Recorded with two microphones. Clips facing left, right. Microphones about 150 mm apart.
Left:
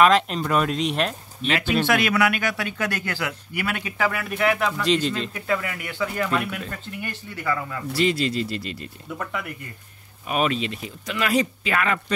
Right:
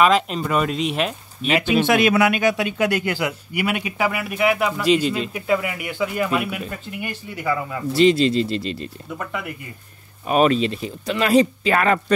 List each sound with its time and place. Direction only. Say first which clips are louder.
0.0 s speech: even; centre (ahead or behind)
1.6 s speech: right 4 dB; 15° right (ahead or behind)
9.1 s speech: right 1 dB; 5° right (ahead or behind)
10.2 s speech: right 7 dB; 35° right (ahead or behind)